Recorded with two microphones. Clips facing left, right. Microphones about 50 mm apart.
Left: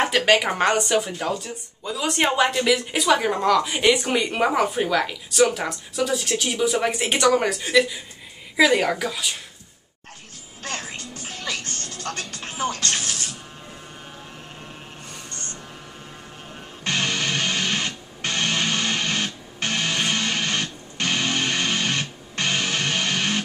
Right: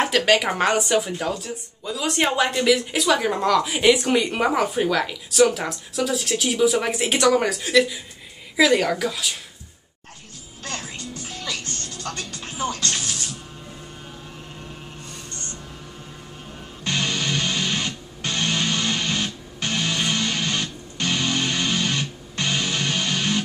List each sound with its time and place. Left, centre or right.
0.0 s speech: centre
10.6 s music: left
16.8 s music: left